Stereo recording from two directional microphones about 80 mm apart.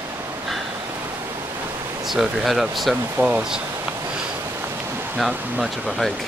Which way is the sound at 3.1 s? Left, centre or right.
Centre.